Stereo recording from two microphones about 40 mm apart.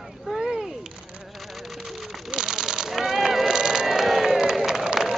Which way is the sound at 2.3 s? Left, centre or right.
Centre.